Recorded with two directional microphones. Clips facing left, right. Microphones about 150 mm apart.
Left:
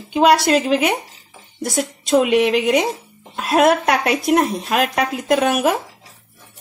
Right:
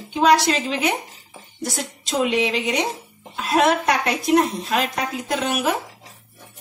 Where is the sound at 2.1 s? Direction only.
60° left (ahead or behind).